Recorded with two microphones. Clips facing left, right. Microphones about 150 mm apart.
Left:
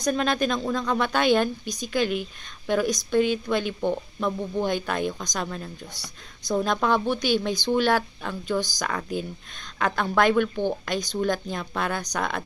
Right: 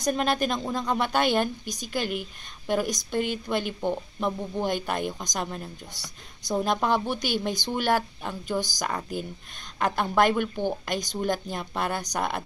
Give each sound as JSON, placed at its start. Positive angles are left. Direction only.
{"t": 0.0, "sound": "speech", "side_deg": -15}